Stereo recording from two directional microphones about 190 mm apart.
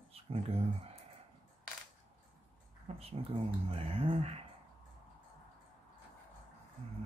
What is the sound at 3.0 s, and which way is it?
Speech, 30° right (ahead or behind).